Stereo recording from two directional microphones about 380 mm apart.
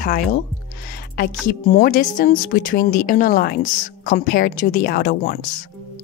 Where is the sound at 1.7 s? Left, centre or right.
Centre.